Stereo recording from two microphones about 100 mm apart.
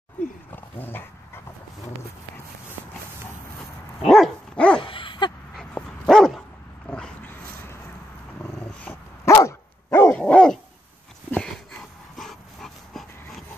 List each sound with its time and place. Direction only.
0.5 s dog: 20° left (ahead or behind)
4.0 s dog: centre (ahead or behind)
4.8 s dog: 60° left (ahead or behind)
5.6 s dog: 5° left (ahead or behind)
6.9 s dog: 15° left (ahead or behind)
9.2 s dog: 30° left (ahead or behind)
10.1 s dog: 15° left (ahead or behind)
11.3 s a sound: 5° left (ahead or behind)
12.2 s dog: 5° left (ahead or behind)